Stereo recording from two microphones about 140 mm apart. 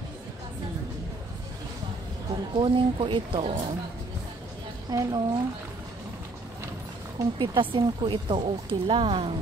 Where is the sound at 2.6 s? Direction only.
40° right (ahead or behind).